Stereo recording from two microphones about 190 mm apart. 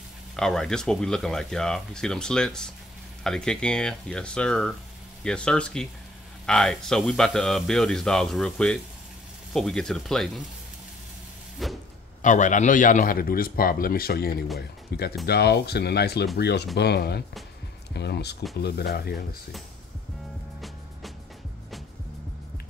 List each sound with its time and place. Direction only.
0.4 s speech: 5° left (ahead or behind)
11.6 s speech: centre (ahead or behind)
12.2 s a man's voice: 40° left (ahead or behind); by 19.2 s 60° left (ahead or behind)